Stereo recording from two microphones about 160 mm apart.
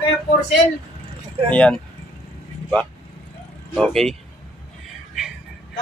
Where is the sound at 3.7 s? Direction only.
5° left (ahead or behind).